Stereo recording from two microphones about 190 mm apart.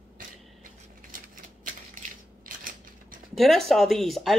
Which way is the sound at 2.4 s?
50° right (ahead or behind).